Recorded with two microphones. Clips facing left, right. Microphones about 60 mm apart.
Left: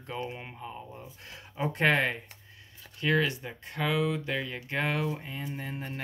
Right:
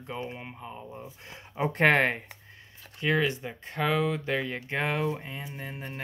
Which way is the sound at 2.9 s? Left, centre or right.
Right.